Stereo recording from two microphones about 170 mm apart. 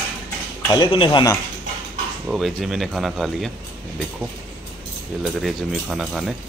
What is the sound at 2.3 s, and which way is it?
Speech, centre (ahead or behind).